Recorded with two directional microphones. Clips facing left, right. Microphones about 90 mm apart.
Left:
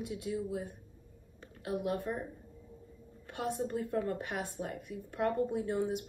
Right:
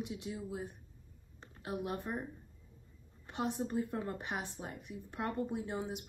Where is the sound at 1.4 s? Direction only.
25° right (ahead or behind).